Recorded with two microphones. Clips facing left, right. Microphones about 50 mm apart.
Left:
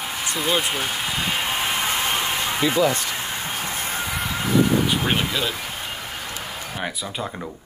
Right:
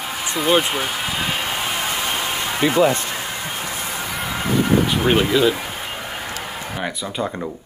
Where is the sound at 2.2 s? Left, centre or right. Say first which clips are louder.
Right 2 dB; right.